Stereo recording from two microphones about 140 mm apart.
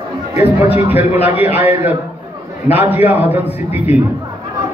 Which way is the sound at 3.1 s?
15° right (ahead or behind).